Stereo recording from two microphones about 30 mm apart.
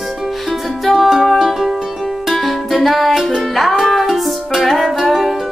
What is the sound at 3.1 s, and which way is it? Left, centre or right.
Music, centre.